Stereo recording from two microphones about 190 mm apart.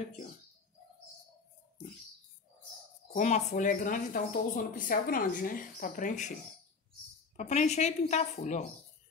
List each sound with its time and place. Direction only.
3.1 s a woman's voice: 40° left (ahead or behind)
7.3 s a woman's voice: 35° left (ahead or behind)